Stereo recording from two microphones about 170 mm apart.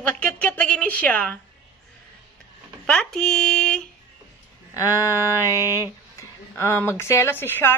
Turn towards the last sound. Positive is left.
turn(degrees=10)  # may be behind; listen again after turning